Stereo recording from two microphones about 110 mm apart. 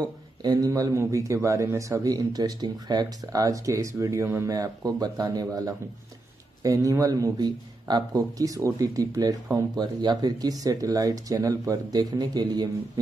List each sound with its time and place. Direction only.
0.4 s speech: 35° right (ahead or behind)